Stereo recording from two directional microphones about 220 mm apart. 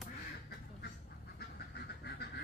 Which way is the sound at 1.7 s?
45° left (ahead or behind).